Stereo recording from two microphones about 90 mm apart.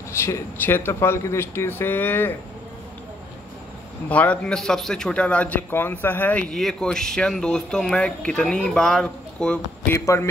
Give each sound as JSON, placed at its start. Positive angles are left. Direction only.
{"t": 0.1, "sound": "speech", "side_deg": 30}
{"t": 4.1, "sound": "speech", "side_deg": 15}
{"t": 6.5, "sound": "speech", "side_deg": 5}
{"t": 9.8, "sound": "a man's voice", "side_deg": 30}